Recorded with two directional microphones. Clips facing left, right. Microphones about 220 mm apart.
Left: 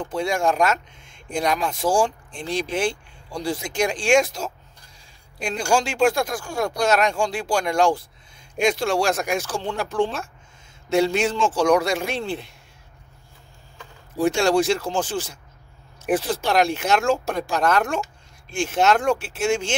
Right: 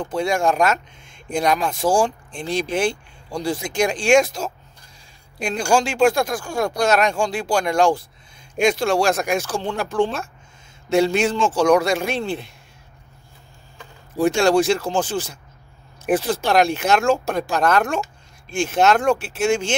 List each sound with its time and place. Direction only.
0.0 s speech: 45° right (ahead or behind)
14.1 s speech: 50° right (ahead or behind)